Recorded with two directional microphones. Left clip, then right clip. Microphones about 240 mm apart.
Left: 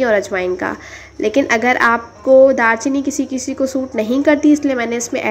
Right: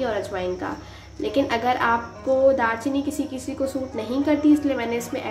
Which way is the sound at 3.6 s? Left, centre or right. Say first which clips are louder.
Left 8 dB; left.